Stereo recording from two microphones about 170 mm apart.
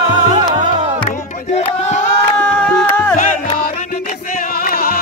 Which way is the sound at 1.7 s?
45° left (ahead or behind).